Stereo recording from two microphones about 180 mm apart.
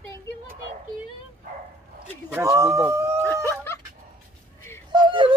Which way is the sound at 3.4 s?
15° left (ahead or behind).